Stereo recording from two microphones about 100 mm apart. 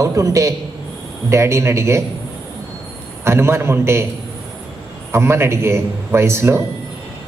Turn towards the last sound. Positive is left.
turn(degrees=-25)  # may be behind; listen again after turning